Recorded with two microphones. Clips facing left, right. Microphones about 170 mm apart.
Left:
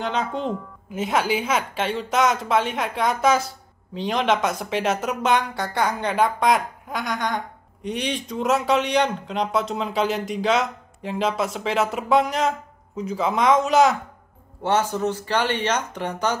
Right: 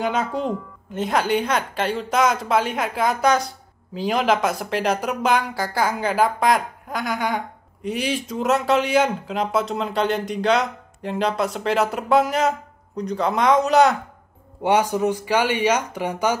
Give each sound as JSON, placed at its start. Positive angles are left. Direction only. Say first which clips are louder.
{"t": 0.0, "sound": "speech", "louder": "right 2 dB", "side_deg": -5}
{"t": 14.6, "sound": "speech", "louder": "right 3 dB", "side_deg": -15}